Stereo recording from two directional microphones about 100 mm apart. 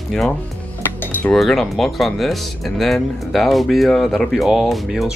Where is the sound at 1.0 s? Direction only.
20° left (ahead or behind).